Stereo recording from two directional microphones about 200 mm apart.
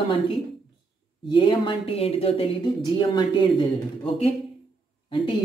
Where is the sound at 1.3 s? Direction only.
25° left (ahead or behind).